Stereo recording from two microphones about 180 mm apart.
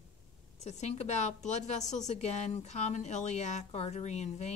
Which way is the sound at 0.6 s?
40° left (ahead or behind).